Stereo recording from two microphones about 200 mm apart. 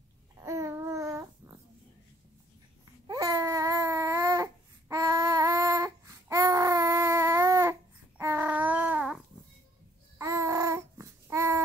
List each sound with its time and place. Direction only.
0.4 s babbling: 15° right (ahead or behind)
3.1 s babbling: 15° right (ahead or behind)